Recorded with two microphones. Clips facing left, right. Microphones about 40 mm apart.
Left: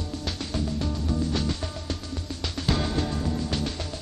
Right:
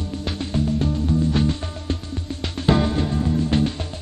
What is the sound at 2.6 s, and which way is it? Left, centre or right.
Music, right.